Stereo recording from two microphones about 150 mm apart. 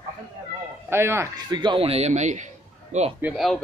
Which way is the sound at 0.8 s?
15° right (ahead or behind).